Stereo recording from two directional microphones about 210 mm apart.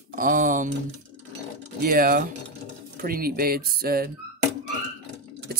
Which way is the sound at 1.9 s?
40° right (ahead or behind).